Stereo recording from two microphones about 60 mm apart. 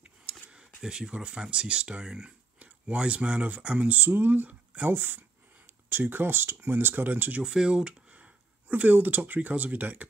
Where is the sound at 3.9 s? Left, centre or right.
Right.